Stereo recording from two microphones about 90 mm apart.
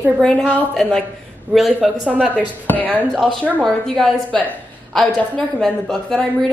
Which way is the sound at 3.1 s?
5° right (ahead or behind).